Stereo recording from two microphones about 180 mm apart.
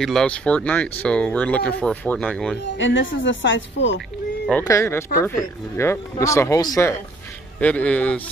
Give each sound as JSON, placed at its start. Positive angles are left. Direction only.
{"t": 0.0, "sound": "speech", "side_deg": 5}
{"t": 2.8, "sound": "speech", "side_deg": 90}
{"t": 4.6, "sound": "speech", "side_deg": 15}